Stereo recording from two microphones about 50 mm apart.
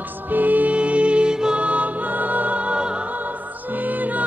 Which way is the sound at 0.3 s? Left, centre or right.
Right.